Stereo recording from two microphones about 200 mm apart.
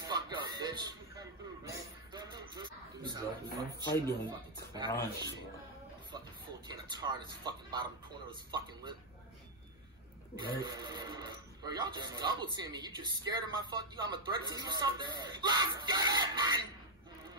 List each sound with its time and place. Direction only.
0.0 s a sound: 20° right (ahead or behind)
4.3 s speech: 20° right (ahead or behind)
6.7 s a man's voice: 20° right (ahead or behind)
10.3 s speech: 20° right (ahead or behind)